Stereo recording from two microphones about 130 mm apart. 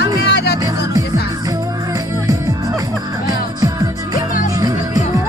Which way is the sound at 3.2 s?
30° right (ahead or behind).